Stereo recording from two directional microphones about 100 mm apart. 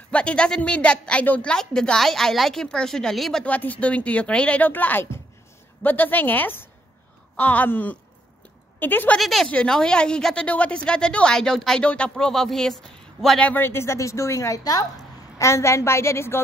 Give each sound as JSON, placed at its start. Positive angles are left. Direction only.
{"t": 0.1, "sound": "a woman's voice", "side_deg": 10}
{"t": 3.4, "sound": "a woman's voice", "side_deg": 15}
{"t": 9.2, "sound": "a woman's voice", "side_deg": 0}
{"t": 13.4, "sound": "a woman's voice", "side_deg": 15}